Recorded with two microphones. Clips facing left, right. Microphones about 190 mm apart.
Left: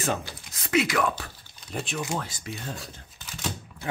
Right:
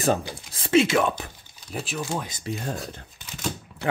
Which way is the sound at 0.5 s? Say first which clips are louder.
Right 5 dB; 30° right (ahead or behind).